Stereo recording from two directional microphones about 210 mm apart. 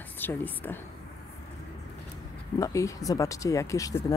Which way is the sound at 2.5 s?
15° left (ahead or behind).